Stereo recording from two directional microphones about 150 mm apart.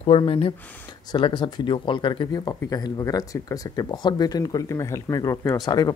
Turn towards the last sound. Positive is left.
turn(degrees=25)  # may be behind; listen again after turning